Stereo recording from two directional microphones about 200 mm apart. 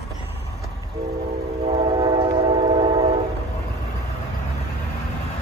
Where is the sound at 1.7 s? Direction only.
30° right (ahead or behind).